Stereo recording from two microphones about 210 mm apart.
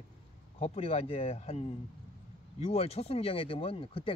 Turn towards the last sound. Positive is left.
turn(degrees=25)  # may be behind; listen again after turning